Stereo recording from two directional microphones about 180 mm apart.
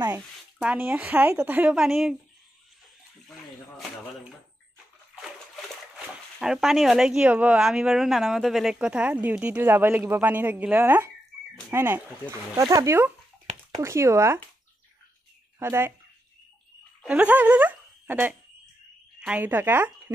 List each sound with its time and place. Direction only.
0.1 s speech: 5° right (ahead or behind)
5.9 s speech: 5° right (ahead or behind)
15.6 s speech: 15° right (ahead or behind)
17.0 s speech: 10° right (ahead or behind)